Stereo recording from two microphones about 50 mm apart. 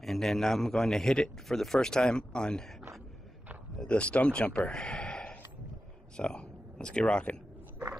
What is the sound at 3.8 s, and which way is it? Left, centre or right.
Speech, left.